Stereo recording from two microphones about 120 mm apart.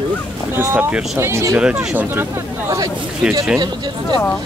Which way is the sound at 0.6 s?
15° right (ahead or behind).